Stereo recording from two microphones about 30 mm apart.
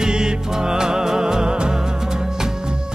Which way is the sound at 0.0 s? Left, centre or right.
Right.